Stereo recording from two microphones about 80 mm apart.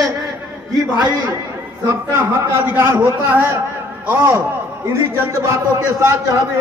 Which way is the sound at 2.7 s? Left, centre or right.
Right.